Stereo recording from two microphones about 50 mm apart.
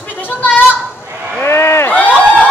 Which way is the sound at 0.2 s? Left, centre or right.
Left.